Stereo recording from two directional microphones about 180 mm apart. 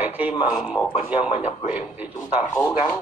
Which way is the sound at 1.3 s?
35° left (ahead or behind).